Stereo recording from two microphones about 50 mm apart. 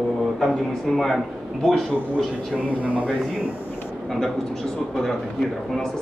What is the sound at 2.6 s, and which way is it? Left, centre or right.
Speech, right.